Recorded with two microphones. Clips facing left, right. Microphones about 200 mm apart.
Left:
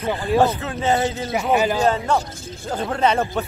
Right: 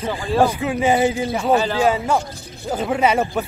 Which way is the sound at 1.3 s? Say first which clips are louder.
Right 1 dB; 10° left (ahead or behind).